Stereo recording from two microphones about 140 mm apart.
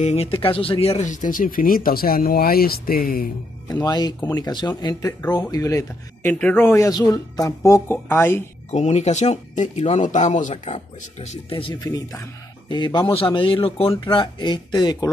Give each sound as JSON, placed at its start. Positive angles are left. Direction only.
{"t": 0.0, "sound": "speech", "side_deg": 50}
{"t": 1.0, "sound": "speech", "side_deg": 65}
{"t": 3.6, "sound": "speech", "side_deg": 30}
{"t": 6.3, "sound": "speech", "side_deg": 10}
{"t": 8.6, "sound": "speech", "side_deg": 55}
{"t": 11.8, "sound": "speech", "side_deg": 25}